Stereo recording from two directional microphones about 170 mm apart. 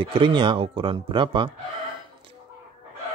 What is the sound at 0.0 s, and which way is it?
A man's voice, 30° right (ahead or behind).